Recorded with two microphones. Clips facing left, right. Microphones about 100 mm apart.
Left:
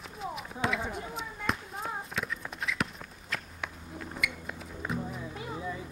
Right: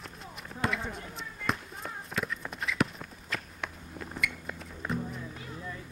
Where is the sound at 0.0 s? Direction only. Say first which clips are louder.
Left 7 dB; centre (ahead or behind).